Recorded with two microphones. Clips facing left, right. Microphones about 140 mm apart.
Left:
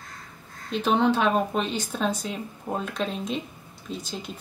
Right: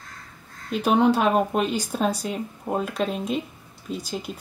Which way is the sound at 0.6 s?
10° right (ahead or behind).